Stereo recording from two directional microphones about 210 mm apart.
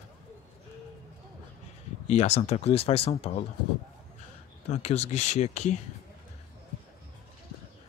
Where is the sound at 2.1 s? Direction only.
30° left (ahead or behind).